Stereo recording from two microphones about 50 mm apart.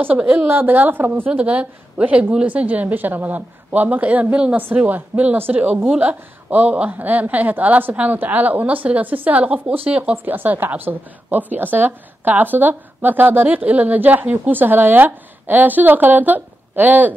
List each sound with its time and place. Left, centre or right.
0.0 s a woman's voice: right
1.3 s a woman's voice: right
10.1 s a woman's voice: right